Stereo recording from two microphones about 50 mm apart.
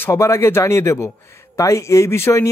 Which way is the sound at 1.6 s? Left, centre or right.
Left.